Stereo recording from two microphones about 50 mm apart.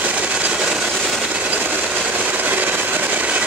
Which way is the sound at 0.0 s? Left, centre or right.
Right.